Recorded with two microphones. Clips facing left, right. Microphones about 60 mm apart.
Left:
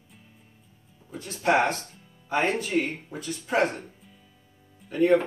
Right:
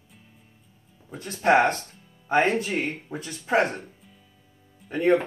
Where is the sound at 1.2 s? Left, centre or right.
Right.